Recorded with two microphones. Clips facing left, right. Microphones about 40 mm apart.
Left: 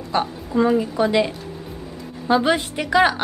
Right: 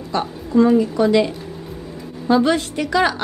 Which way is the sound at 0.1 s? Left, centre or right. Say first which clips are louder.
Right 2 dB; centre.